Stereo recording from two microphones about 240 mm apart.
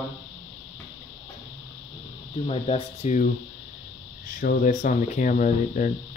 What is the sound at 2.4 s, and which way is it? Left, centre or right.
Speech, left.